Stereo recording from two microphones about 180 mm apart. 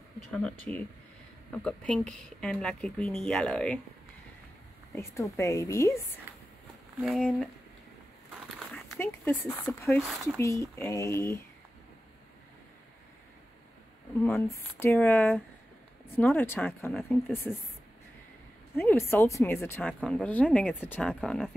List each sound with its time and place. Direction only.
0.3 s speech: 10° left (ahead or behind)
4.9 s speech: 15° left (ahead or behind)
7.0 s speech: centre (ahead or behind)
8.7 s speech: 10° left (ahead or behind)
10.0 s speech: centre (ahead or behind)
10.4 s speech: 15° left (ahead or behind)
14.8 s speech: 10° left (ahead or behind)
18.8 s speech: 10° left (ahead or behind)
21.1 s speech: centre (ahead or behind)